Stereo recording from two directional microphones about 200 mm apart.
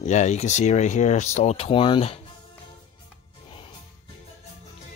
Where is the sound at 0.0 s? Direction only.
35° left (ahead or behind).